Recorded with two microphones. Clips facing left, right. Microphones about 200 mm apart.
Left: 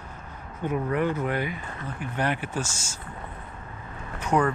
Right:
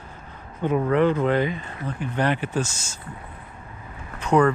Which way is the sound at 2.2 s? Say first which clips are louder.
Right 4 dB; 10° left (ahead or behind).